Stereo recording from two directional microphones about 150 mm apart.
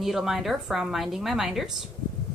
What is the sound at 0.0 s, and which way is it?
A woman's voice, centre (ahead or behind).